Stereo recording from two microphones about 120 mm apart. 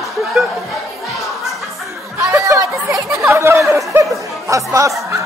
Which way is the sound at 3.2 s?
20° right (ahead or behind).